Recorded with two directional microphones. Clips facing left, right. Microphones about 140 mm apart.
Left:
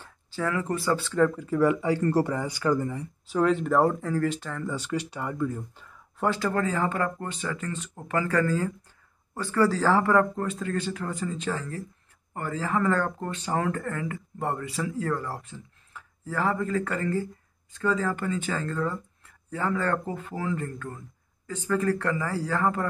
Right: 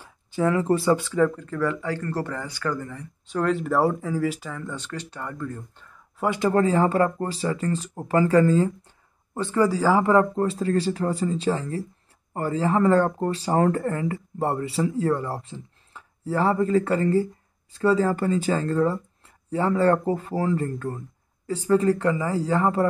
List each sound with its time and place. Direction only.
0.4 s speech: 25° right (ahead or behind)
1.1 s speech: centre (ahead or behind)
3.3 s speech: centre (ahead or behind)
4.7 s speech: 10° left (ahead or behind)
6.2 s speech: 15° right (ahead or behind)
6.5 s speech: 30° right (ahead or behind); by 10.0 s 10° right (ahead or behind)
10.0 s speech: 25° right (ahead or behind)